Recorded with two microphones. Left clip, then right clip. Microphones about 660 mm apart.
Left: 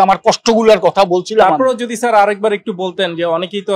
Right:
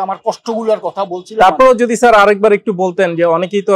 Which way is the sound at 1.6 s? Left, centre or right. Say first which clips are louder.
Right 7 dB; right.